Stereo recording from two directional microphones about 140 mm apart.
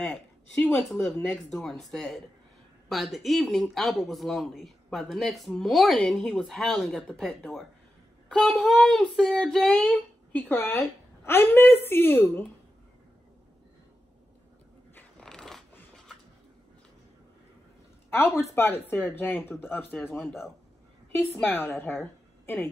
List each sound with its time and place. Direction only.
0.1 s speech: 15° left (ahead or behind)
10.4 s a woman's voice: 15° left (ahead or behind)
15.0 s a sound: 5° left (ahead or behind)
18.1 s a woman's voice: 15° left (ahead or behind)
21.2 s a woman's voice: 15° left (ahead or behind)